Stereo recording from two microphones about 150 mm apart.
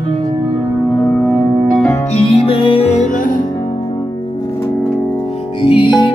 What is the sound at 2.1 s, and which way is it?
Music, 40° left (ahead or behind).